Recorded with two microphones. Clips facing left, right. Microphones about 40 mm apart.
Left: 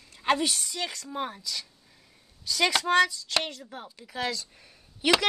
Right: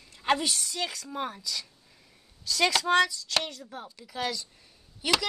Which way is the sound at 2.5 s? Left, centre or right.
Centre.